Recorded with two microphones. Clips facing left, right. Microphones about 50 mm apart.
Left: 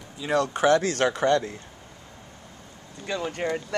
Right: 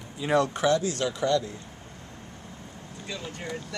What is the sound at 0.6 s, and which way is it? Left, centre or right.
Speech, left.